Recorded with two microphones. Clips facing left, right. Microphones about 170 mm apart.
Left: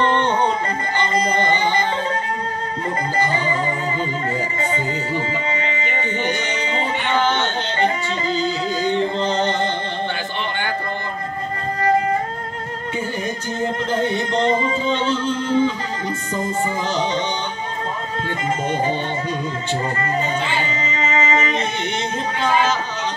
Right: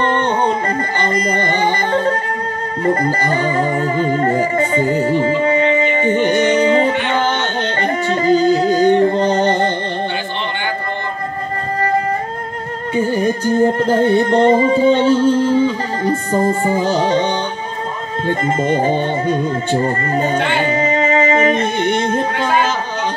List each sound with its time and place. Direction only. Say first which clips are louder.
0.0 s music: right 2 dB; 50° right (ahead or behind)
12.9 s music: right 10 dB; 50° right (ahead or behind)